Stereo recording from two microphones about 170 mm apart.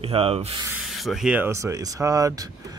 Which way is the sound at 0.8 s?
Centre (ahead or behind).